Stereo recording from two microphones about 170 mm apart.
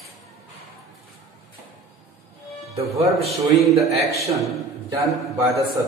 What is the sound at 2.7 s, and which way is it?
Speech, 35° right (ahead or behind).